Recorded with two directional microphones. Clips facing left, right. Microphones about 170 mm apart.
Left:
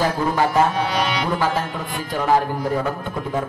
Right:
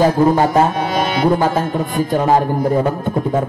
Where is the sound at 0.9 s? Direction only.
45° right (ahead or behind).